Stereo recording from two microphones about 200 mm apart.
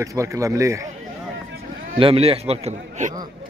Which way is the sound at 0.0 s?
15° right (ahead or behind).